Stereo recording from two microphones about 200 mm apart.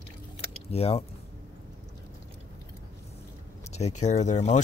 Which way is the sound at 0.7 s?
30° left (ahead or behind).